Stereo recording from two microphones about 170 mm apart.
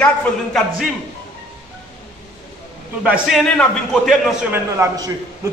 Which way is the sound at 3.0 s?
5° right (ahead or behind).